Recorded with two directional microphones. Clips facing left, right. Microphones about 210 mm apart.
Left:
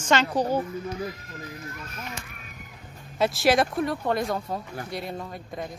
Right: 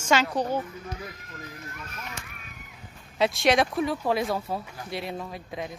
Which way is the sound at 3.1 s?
Centre (ahead or behind).